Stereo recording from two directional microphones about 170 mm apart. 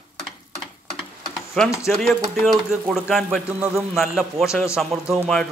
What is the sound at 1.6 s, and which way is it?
A man's voice, 5° left (ahead or behind).